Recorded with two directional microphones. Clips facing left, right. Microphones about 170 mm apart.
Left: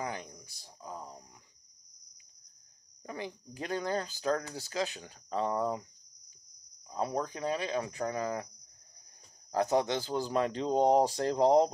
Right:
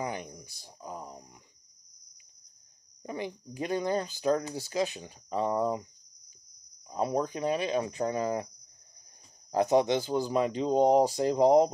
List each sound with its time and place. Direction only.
0.0 s a sound: 20° right (ahead or behind)
3.0 s speech: 25° right (ahead or behind)
6.9 s speech: 20° right (ahead or behind)
9.5 s speech: 20° right (ahead or behind)